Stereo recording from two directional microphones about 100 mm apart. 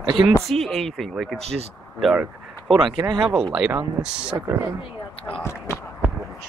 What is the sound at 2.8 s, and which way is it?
Speech, 45° right (ahead or behind).